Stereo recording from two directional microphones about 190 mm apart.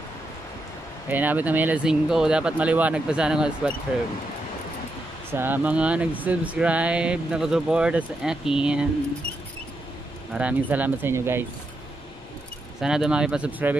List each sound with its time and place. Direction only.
1.0 s speech: 10° right (ahead or behind)
5.3 s speech: 10° right (ahead or behind)
10.3 s speech: 10° right (ahead or behind)
12.8 s speech: 5° right (ahead or behind)